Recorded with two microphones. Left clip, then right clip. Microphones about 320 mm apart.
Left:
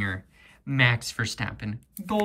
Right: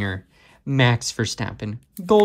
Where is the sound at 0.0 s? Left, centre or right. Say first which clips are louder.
Right 2 dB; centre.